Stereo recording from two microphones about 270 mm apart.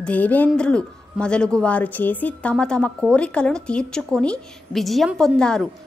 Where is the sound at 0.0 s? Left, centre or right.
Centre.